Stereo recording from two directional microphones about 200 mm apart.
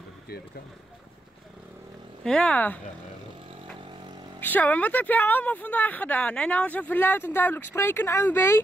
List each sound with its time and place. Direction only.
2.2 s speech: 5° left (ahead or behind)
4.4 s a woman's voice: 10° left (ahead or behind)